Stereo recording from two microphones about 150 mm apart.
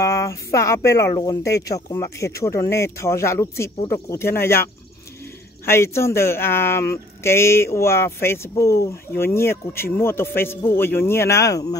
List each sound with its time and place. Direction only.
0.0 s speech: 20° left (ahead or behind)
5.7 s speech: 15° left (ahead or behind)